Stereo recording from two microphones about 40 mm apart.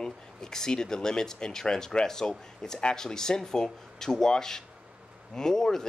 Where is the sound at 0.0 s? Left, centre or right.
Centre.